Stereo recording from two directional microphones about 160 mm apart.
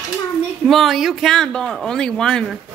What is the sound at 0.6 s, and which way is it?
Speech, centre (ahead or behind).